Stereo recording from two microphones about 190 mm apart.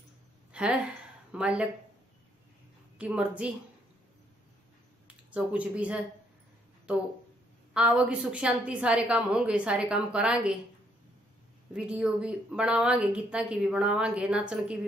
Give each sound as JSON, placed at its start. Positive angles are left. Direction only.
{"t": 0.5, "sound": "a sound", "side_deg": -5}
{"t": 1.3, "sound": "speech", "side_deg": -5}
{"t": 3.0, "sound": "a woman's voice", "side_deg": -5}
{"t": 5.0, "sound": "speech", "side_deg": -5}
{"t": 7.7, "sound": "a woman's voice", "side_deg": -5}
{"t": 11.7, "sound": "a woman's voice", "side_deg": -5}